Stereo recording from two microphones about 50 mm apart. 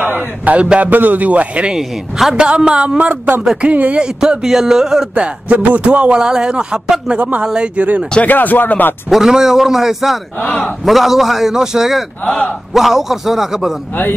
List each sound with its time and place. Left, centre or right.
0.5 s a woman's voice: right
0.8 s a man's voice: right
1.8 s a man's voice: centre
2.3 s a woman's voice: centre
3.1 s a man's voice: right
3.6 s a woman's voice: right
4.0 s speech: centre
5.1 s a woman's voice: right
7.2 s a man's voice: right
7.4 s a woman's voice: right
8.2 s speech: left
9.1 s a man's voice: centre